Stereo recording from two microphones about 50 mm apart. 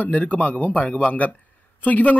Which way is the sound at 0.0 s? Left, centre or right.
Left.